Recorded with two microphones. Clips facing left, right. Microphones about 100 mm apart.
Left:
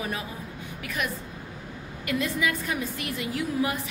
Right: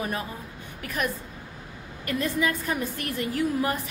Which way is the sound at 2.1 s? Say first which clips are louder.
Right 1 dB; 40° right (ahead or behind).